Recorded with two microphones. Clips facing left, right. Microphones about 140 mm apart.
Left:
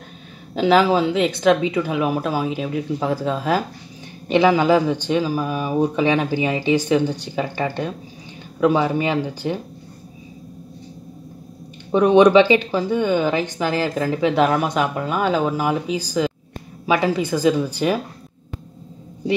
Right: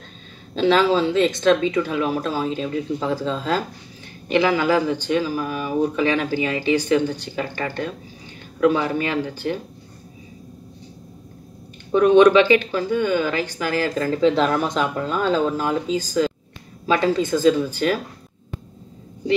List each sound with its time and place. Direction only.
0.6 s speech: 15° left (ahead or behind)
11.9 s speech: 20° left (ahead or behind)